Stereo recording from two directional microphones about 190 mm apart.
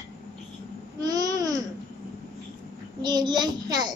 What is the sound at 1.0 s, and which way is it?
Babbling, 20° right (ahead or behind).